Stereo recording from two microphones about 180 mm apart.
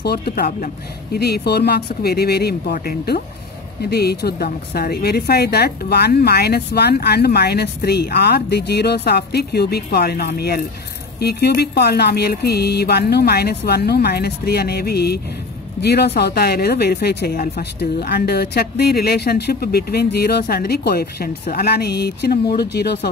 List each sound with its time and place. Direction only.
0.0 s a woman's voice: 60° left (ahead or behind)